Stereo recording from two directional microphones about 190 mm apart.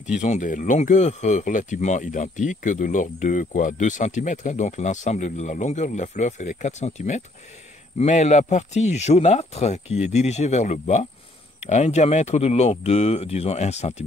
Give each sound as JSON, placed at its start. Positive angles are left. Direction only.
{"t": 0.2, "sound": "speech", "side_deg": 40}